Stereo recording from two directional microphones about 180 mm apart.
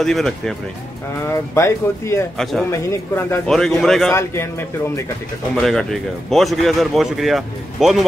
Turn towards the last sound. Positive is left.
turn(degrees=0)  # may be behind; listen again after turning